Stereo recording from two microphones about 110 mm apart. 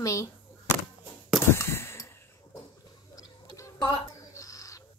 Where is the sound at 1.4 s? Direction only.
25° left (ahead or behind).